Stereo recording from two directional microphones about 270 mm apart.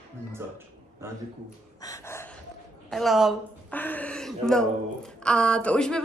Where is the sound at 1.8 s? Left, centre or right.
Centre.